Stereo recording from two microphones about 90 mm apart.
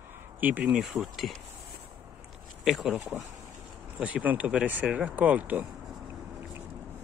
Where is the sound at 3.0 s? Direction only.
30° right (ahead or behind).